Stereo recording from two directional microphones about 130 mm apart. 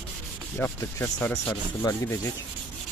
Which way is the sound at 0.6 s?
15° left (ahead or behind).